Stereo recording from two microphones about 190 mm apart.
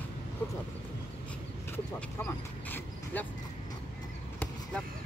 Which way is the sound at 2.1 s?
10° left (ahead or behind).